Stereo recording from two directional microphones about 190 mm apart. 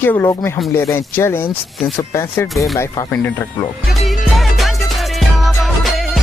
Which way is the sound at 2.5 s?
Centre (ahead or behind).